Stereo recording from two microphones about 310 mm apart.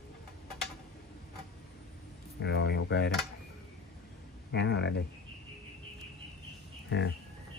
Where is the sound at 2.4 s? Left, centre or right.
Left.